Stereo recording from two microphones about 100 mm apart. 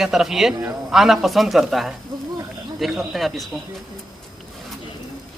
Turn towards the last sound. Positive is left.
turn(degrees=0)  # may be behind; listen again after turning